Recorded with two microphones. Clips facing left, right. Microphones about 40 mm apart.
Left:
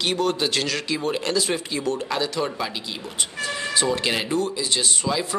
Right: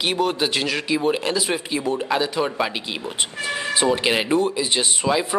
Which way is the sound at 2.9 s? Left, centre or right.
Right.